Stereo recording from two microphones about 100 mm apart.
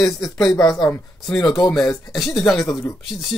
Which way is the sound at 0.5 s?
40° left (ahead or behind).